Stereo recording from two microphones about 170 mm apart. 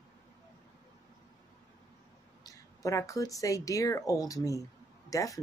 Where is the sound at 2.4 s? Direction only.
20° left (ahead or behind).